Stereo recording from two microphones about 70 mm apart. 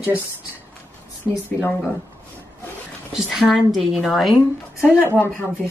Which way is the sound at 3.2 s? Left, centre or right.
Centre.